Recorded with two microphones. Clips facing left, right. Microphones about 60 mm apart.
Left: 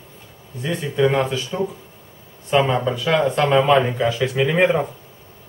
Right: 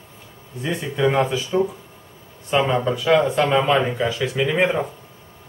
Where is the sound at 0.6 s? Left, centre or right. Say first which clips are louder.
Left 2 dB; centre.